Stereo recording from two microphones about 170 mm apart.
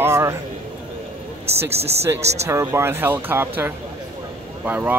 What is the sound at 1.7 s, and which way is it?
Speech, 35° right (ahead or behind).